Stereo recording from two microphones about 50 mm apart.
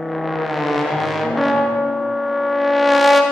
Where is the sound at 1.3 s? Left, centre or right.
Centre.